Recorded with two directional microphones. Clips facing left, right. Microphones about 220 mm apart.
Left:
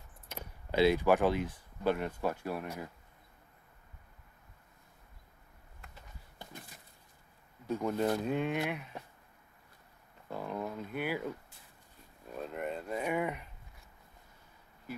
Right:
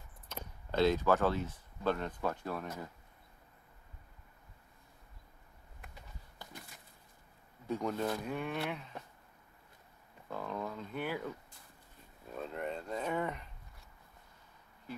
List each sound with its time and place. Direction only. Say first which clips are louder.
0.3 s speech: left 2 dB; 10° left (ahead or behind)
6.3 s a sound: left 2 dB; 20° left (ahead or behind)
7.6 s speech: left 3 dB; 5° left (ahead or behind)
8.1 s speech: left 5 dB; 20° left (ahead or behind)
10.3 s speech: left 2 dB; 15° left (ahead or behind)
12.4 s speech: left 1 dB; 5° left (ahead or behind)